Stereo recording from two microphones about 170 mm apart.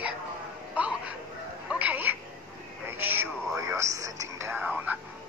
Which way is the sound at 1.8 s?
10° right (ahead or behind).